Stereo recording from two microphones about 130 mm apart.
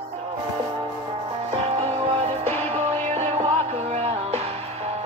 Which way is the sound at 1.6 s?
55° right (ahead or behind).